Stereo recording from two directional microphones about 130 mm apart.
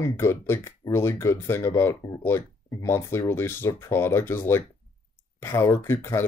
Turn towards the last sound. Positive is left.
turn(degrees=20)  # may be behind; listen again after turning